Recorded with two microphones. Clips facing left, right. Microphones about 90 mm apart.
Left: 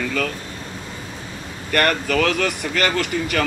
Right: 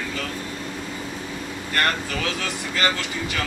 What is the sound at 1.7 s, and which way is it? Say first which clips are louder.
Speech: left 5 dB; 60° left (ahead or behind).